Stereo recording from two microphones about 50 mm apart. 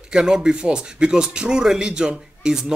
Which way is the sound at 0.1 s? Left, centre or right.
Centre.